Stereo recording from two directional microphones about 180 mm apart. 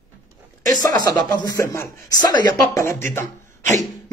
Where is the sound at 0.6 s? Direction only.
20° left (ahead or behind).